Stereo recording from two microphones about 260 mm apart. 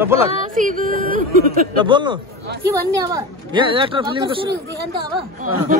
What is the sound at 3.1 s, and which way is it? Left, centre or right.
Speech, centre.